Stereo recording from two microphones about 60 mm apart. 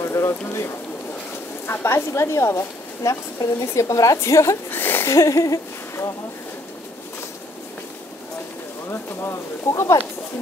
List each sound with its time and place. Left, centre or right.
0.1 s bird: left
1.7 s a woman's voice: left
4.6 s a sound: left
5.1 s speech: left
9.2 s speech: left